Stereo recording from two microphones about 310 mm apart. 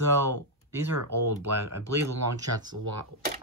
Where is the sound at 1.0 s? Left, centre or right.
Right.